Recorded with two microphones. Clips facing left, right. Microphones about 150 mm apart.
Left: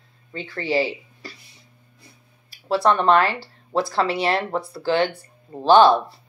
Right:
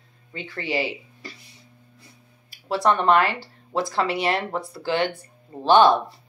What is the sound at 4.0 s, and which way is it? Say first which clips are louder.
Speech: left 1 dB; 35° left (ahead or behind).